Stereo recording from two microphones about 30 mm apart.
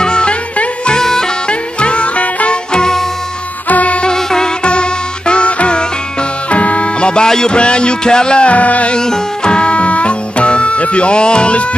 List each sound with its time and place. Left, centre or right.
0.0 s music: left
0.9 s music: centre
1.5 s music: left
2.7 s music: left
3.6 s music: left
4.1 s music: left
4.6 s music: left
6.5 s music: left
7.2 s a man's voice: left
7.5 s music: left
8.5 s music: left
8.9 s music: left
9.5 s music: left